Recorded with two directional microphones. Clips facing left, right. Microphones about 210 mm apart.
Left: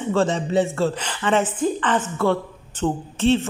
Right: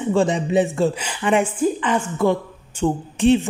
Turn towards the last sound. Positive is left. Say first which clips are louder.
# right 3 dB
turn(degrees=-15)  # may be behind; listen again after turning